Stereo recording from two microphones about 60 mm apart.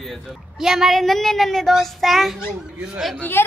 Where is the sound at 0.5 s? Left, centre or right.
Centre.